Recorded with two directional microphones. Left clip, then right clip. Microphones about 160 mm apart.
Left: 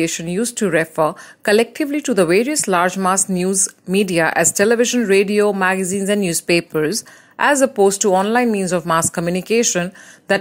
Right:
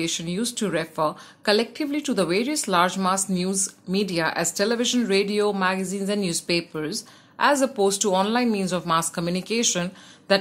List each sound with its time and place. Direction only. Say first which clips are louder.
0.0 s speech: left 7 dB; 40° left (ahead or behind)